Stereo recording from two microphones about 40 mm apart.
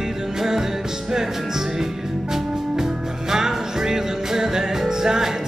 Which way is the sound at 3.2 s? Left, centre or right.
Centre.